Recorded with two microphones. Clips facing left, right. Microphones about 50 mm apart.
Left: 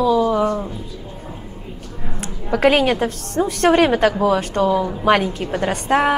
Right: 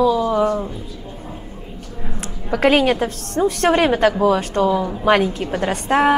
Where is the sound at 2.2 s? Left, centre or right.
Centre.